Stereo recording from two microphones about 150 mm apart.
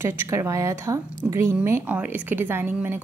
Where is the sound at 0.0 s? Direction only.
20° right (ahead or behind).